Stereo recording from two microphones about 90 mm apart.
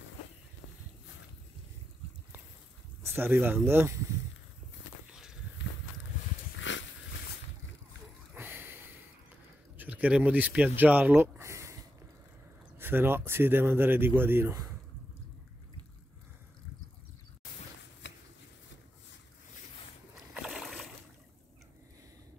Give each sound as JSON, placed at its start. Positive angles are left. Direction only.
{"t": 3.0, "sound": "speech", "side_deg": -25}
{"t": 5.1, "sound": "walk", "side_deg": -5}
{"t": 8.4, "sound": "a sound", "side_deg": -25}
{"t": 9.8, "sound": "speech", "side_deg": -15}
{"t": 12.7, "sound": "speech", "side_deg": -25}
{"t": 20.3, "sound": "splash", "side_deg": -10}